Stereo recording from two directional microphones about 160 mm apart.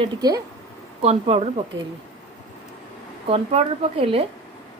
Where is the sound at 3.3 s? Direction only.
40° right (ahead or behind).